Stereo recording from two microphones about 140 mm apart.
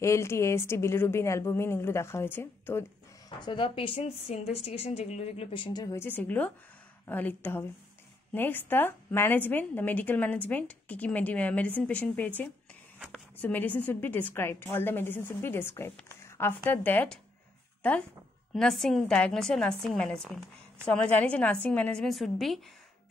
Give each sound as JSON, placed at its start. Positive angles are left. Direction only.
{"t": 0.0, "sound": "a woman's voice", "side_deg": 20}
{"t": 3.3, "sound": "a woman's voice", "side_deg": 35}
{"t": 5.9, "sound": "a woman's voice", "side_deg": 15}
{"t": 18.5, "sound": "a woman's voice", "side_deg": 0}